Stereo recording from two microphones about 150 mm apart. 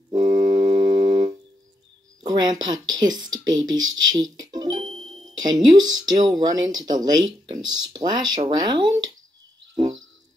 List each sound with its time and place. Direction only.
0.5 s foghorn: 30° right (ahead or behind)
2.2 s speech: 25° right (ahead or behind)